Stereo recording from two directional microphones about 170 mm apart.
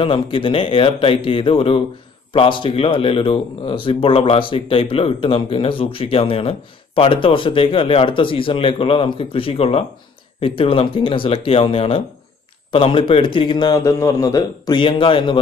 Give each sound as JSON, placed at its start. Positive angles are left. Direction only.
{"t": 0.0, "sound": "a man's voice", "side_deg": 30}